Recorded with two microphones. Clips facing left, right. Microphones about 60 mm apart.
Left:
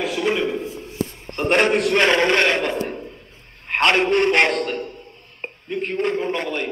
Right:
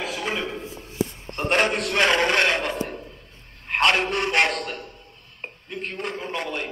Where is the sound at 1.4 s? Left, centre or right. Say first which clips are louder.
Left 5 dB; left.